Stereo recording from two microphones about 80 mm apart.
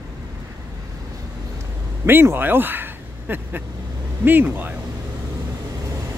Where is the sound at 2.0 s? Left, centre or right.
Right.